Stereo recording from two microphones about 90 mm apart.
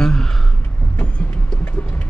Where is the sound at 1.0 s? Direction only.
15° left (ahead or behind).